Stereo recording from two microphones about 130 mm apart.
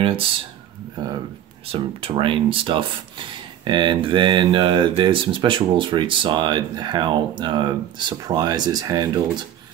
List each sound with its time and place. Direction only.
0.0 s speech: 45° right (ahead or behind)
1.7 s speech: 45° right (ahead or behind); by 9.5 s 30° right (ahead or behind)